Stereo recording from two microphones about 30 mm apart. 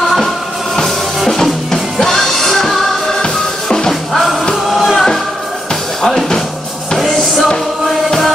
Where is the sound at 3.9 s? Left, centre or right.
Centre.